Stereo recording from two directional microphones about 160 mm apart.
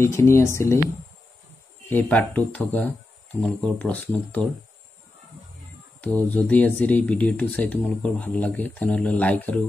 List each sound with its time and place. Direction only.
0.0 s speech: 15° left (ahead or behind)
1.9 s speech: 10° left (ahead or behind)
5.9 s speech: 10° left (ahead or behind)